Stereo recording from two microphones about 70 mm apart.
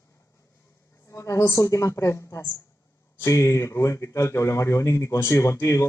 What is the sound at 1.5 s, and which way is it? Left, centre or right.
Speech, left.